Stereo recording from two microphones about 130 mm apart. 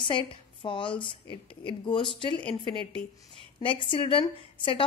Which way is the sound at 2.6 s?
45° right (ahead or behind).